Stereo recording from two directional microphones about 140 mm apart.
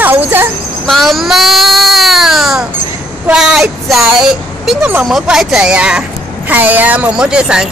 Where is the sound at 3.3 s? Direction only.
5° right (ahead or behind).